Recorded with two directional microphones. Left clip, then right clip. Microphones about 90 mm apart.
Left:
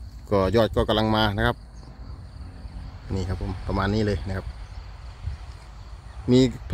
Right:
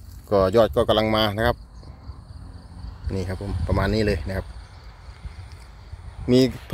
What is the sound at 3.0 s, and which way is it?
Speech, 20° right (ahead or behind).